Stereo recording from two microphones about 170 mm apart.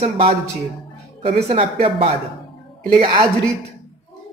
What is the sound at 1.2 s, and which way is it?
A man's voice, 35° right (ahead or behind).